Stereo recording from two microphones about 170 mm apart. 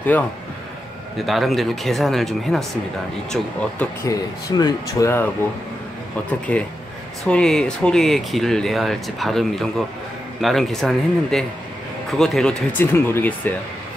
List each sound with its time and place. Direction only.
1.1 s speech: centre (ahead or behind)
3.8 s speech: 20° left (ahead or behind)
6.5 s speech: 10° left (ahead or behind)